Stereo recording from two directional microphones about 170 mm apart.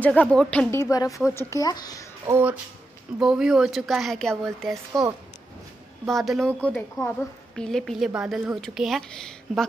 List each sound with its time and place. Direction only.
0.0 s speech: 10° left (ahead or behind)
2.2 s a woman's voice: 10° right (ahead or behind)
6.0 s a woman's voice: centre (ahead or behind)